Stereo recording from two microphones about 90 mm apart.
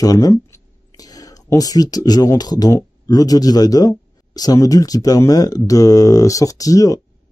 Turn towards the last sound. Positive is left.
turn(degrees=40)  # may be behind; listen again after turning